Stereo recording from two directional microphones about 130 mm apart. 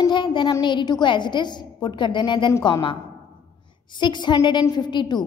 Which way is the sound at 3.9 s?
35° left (ahead or behind).